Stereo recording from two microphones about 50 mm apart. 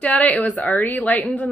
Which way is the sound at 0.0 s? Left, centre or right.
Left.